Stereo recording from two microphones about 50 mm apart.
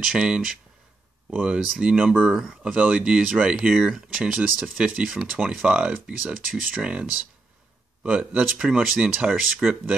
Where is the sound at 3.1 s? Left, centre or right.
Centre.